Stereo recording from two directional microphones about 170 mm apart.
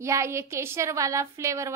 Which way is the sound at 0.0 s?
15° right (ahead or behind).